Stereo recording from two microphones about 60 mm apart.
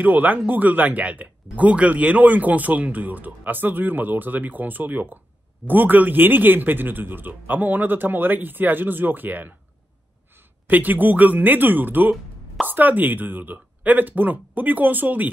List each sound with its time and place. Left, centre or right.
0.0 s a man's voice: right